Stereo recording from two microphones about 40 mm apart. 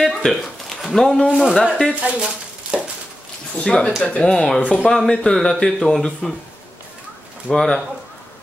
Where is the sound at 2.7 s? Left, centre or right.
Right.